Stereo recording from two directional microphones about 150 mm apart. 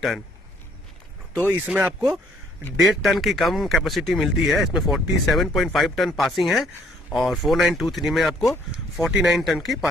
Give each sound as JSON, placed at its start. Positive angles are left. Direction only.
{"t": 1.3, "sound": "speech", "side_deg": -15}